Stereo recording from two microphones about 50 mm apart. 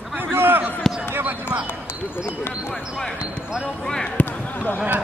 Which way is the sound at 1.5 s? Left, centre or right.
Right.